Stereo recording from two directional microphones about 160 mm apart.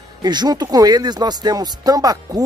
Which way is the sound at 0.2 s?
25° right (ahead or behind).